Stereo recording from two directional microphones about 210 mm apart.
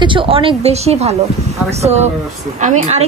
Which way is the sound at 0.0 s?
25° right (ahead or behind).